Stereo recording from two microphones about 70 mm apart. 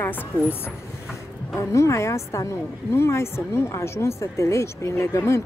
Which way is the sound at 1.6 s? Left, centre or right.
Left.